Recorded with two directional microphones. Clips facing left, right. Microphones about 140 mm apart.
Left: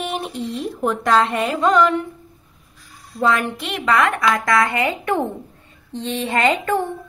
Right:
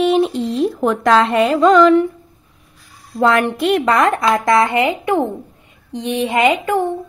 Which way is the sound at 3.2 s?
65° right (ahead or behind).